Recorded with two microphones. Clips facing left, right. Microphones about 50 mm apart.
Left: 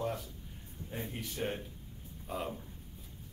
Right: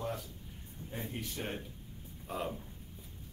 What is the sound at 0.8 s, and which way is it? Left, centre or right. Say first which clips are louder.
Speech: left 1 dB; right.